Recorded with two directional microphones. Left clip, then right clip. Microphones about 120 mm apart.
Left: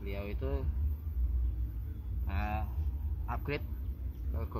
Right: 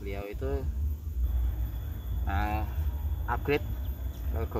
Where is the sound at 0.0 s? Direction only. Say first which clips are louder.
Right 4 dB; 15° right (ahead or behind).